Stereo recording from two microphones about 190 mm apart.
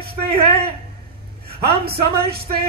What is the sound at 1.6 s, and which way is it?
A woman's voice, 55° right (ahead or behind).